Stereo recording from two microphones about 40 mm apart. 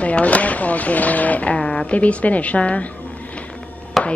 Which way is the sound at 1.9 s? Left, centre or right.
Left.